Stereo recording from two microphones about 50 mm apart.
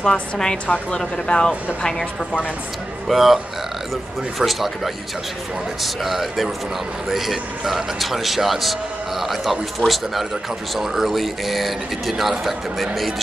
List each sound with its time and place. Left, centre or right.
0.0 s a woman's voice: centre
3.1 s a man's voice: centre